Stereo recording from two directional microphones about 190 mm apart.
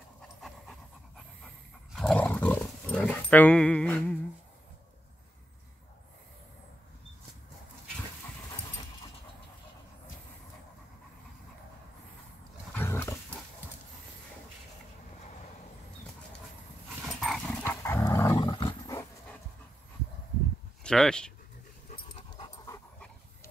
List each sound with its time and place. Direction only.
0.4 s pant: centre (ahead or behind)
2.0 s dog: 5° left (ahead or behind)
12.7 s a sound: 10° left (ahead or behind)
17.0 s dog: centre (ahead or behind)
17.6 s dog: 10° left (ahead or behind)
20.8 s speech: 5° left (ahead or behind)